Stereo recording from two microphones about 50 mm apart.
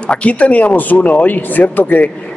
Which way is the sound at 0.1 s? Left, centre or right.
Left.